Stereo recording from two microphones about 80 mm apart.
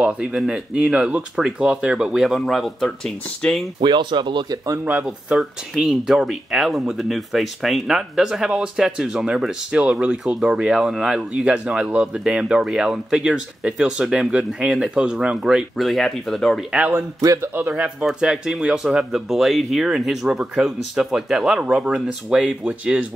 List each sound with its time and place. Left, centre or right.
0.0 s speech: centre
3.4 s speech: centre
3.8 s speech: right
5.0 s speech: centre
17.6 s speech: centre
18.0 s speech: centre